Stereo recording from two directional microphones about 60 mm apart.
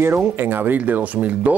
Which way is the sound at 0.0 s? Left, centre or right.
Right.